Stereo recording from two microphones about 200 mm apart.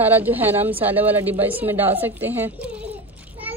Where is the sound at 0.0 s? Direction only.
10° right (ahead or behind).